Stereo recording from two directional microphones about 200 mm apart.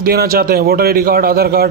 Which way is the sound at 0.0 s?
50° right (ahead or behind).